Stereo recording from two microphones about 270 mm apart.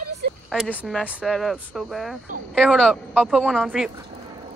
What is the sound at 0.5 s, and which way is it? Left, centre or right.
Speech, centre.